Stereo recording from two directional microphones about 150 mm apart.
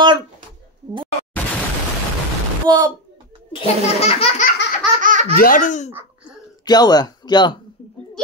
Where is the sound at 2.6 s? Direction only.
25° right (ahead or behind).